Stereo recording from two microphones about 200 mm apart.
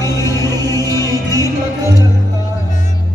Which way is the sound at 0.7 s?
20° right (ahead or behind).